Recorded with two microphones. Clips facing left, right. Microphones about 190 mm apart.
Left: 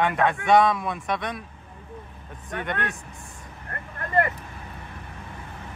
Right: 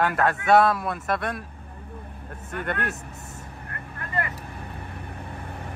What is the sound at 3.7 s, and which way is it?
Vehicle, 40° left (ahead or behind).